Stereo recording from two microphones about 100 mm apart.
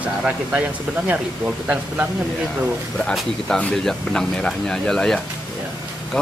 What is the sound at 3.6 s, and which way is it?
Speech, 5° left (ahead or behind).